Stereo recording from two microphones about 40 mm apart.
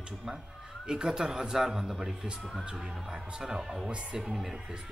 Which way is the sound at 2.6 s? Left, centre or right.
Centre.